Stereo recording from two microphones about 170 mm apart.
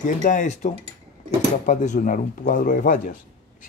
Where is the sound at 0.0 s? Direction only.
45° left (ahead or behind).